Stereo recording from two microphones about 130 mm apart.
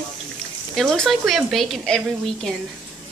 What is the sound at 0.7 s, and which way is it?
Speech, 5° left (ahead or behind).